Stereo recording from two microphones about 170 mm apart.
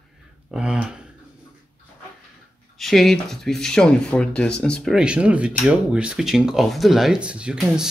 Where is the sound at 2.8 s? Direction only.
Centre (ahead or behind).